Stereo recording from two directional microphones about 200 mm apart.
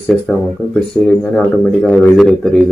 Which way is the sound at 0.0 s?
5° left (ahead or behind).